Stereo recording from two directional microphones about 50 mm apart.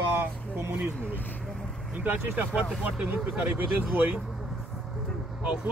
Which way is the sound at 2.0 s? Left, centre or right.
Right.